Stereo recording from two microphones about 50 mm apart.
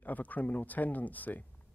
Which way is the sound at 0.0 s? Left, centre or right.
Left.